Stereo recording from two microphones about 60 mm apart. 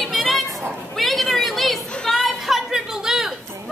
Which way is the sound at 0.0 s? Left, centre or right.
Centre.